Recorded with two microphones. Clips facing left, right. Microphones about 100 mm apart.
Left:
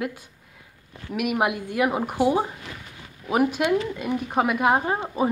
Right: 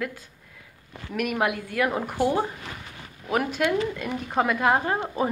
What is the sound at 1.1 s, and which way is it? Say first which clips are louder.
A woman's voice: left 2 dB; 10° left (ahead or behind).